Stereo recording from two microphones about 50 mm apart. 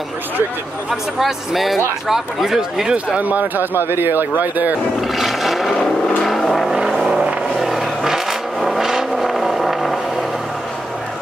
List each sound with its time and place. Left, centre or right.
0.8 s speech: centre
3.2 s speech: right
3.7 s speech: right
4.4 s speech: right
5.0 s a sound: centre
6.2 s vehicle: centre